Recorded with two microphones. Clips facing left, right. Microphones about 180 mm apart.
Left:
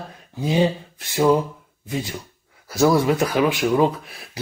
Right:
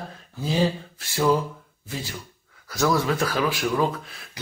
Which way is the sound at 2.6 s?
25° left (ahead or behind).